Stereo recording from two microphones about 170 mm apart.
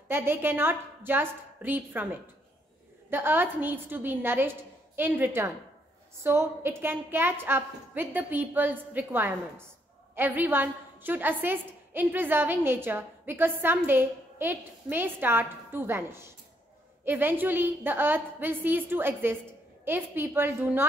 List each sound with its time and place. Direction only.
0.1 s a woman's voice: 15° right (ahead or behind)
3.1 s a woman's voice: 10° right (ahead or behind)